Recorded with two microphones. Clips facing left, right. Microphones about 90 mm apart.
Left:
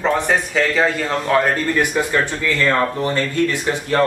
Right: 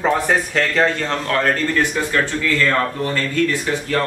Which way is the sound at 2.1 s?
20° left (ahead or behind).